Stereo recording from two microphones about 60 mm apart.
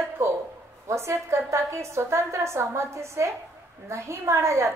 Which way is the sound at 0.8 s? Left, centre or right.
Right.